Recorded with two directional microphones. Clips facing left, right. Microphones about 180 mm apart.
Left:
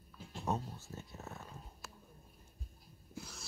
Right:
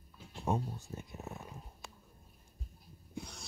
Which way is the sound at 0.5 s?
15° right (ahead or behind).